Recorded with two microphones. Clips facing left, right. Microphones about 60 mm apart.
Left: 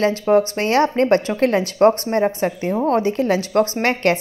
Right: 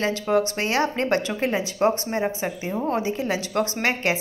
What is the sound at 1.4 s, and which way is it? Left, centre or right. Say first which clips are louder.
A woman's voice: left 7 dB; left.